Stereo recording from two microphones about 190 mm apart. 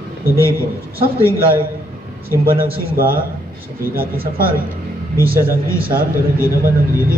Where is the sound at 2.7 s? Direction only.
50° right (ahead or behind).